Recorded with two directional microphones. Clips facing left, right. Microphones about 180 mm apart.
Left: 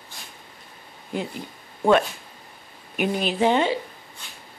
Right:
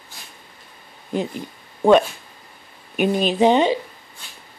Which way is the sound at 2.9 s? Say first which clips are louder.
Right 5 dB; 20° right (ahead or behind).